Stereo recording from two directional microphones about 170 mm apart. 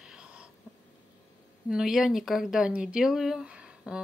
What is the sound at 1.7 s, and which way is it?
Speech, centre (ahead or behind).